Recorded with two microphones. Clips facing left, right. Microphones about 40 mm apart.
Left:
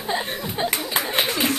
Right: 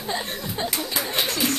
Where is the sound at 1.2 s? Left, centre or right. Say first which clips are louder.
Left 2 dB; centre.